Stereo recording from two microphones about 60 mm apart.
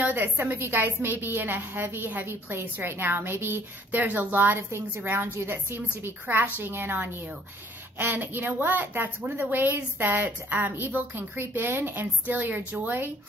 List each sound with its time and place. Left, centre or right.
0.0 s a woman's voice: right
6.2 s a woman's voice: right